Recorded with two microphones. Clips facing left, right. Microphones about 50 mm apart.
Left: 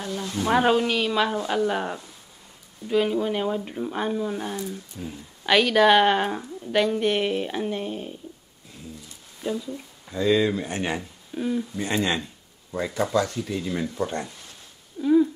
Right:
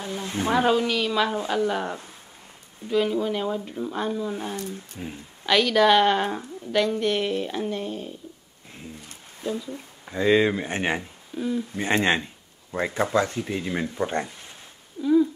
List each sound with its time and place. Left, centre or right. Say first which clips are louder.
0.0 s speech: even; right
0.5 s speech: left 1 dB; centre
5.0 s speech: right 1 dB; right
5.4 s speech: left 1 dB; centre
9.7 s speech: left 1 dB; right
11.3 s speech: left 1 dB; centre
11.7 s speech: right 3 dB; right
15.0 s speech: left 1 dB; centre